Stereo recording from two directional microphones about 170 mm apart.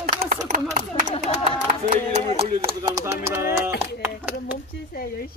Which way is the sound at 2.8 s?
15° right (ahead or behind).